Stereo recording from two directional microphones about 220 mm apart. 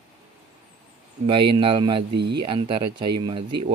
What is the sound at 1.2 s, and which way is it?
Speech, 20° right (ahead or behind).